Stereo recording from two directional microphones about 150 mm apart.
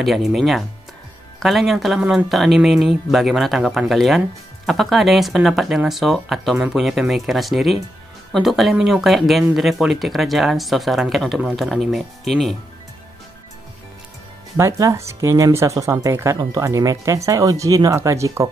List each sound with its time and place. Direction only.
0.0 s speech: centre (ahead or behind)
14.6 s speech: 20° right (ahead or behind)